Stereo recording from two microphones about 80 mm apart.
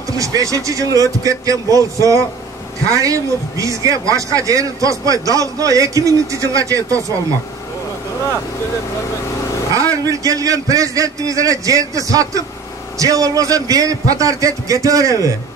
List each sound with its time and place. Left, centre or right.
0.2 s a man's voice: right
9.8 s a man's voice: right